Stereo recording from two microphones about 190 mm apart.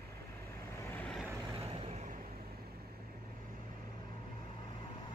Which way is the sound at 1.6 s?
30° right (ahead or behind).